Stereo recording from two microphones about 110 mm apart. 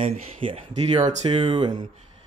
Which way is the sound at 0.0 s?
55° right (ahead or behind).